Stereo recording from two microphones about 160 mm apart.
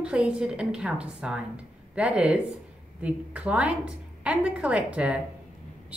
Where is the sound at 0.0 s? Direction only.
5° right (ahead or behind).